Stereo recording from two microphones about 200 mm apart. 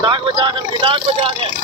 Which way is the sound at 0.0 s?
25° right (ahead or behind).